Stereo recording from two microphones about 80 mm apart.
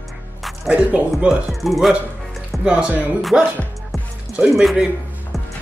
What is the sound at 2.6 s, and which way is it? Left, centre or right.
Speech, centre.